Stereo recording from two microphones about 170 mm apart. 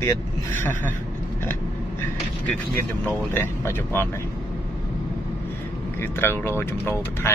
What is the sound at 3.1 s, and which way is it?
Speech, 10° left (ahead or behind).